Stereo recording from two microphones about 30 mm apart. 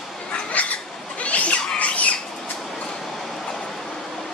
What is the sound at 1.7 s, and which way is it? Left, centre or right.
Squawk, left.